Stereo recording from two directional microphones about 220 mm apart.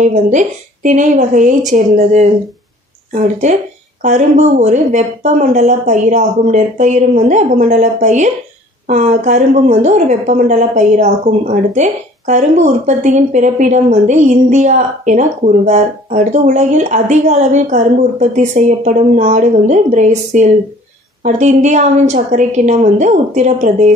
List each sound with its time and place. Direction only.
0.0 s a woman's voice: 35° right (ahead or behind)